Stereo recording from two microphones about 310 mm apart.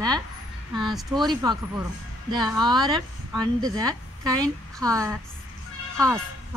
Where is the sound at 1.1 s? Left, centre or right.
Centre.